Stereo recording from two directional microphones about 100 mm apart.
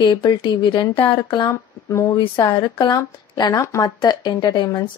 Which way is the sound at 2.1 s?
50° left (ahead or behind).